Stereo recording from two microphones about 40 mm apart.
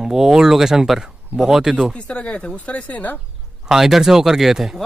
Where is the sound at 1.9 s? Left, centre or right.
Left.